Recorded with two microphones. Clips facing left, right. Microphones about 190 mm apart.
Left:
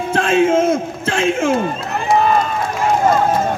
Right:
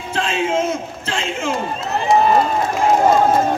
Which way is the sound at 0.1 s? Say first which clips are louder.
Left 6 dB; 50° left (ahead or behind).